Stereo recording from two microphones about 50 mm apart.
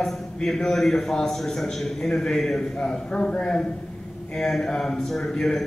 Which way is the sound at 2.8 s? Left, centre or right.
Centre.